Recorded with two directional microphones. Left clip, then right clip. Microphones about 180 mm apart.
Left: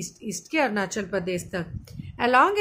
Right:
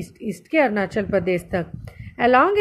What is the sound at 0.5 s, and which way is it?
A woman's voice, 15° right (ahead or behind).